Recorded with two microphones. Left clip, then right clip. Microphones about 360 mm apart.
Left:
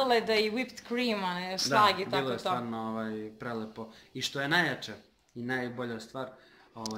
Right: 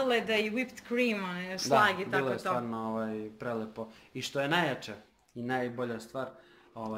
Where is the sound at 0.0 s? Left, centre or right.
Centre.